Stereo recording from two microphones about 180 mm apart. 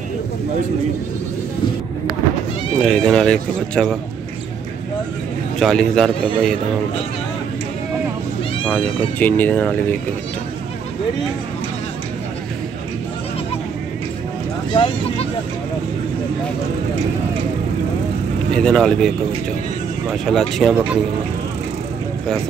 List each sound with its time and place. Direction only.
2.8 s speech: 5° left (ahead or behind)
5.6 s speech: 5° left (ahead or behind)
8.7 s speech: 10° left (ahead or behind)
14.7 s vehicle: 25° left (ahead or behind)
18.5 s speech: 5° left (ahead or behind)